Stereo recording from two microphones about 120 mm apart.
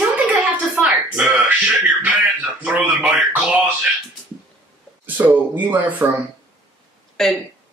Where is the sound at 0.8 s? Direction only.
15° right (ahead or behind).